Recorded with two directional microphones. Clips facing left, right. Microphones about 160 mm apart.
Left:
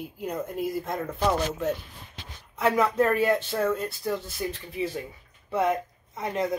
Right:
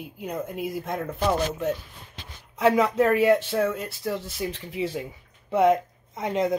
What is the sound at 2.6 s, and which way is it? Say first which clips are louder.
Speech: right 3 dB; 15° right (ahead or behind).